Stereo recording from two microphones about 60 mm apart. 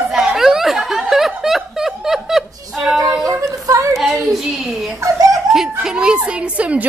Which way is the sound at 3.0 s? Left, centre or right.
Right.